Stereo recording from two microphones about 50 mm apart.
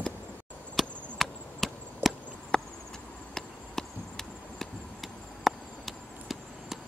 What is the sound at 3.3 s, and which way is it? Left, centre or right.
Chop, centre.